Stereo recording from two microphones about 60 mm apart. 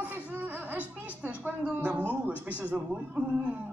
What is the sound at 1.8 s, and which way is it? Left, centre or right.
A man's voice, right.